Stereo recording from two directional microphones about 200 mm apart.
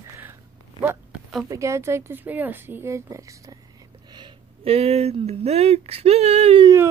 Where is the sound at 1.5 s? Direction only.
15° right (ahead or behind).